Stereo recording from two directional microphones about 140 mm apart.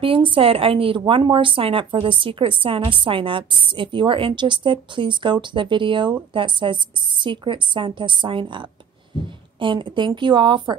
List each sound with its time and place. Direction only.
0.0 s a woman's voice: 40° right (ahead or behind)